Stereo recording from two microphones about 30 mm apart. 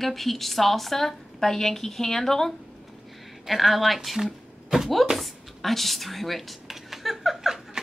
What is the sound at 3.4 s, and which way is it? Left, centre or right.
Speech, centre.